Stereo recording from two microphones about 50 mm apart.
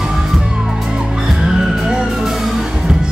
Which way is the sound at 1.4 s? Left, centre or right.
Centre.